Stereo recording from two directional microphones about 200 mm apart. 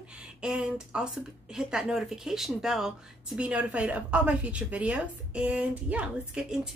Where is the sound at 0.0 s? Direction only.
5° right (ahead or behind).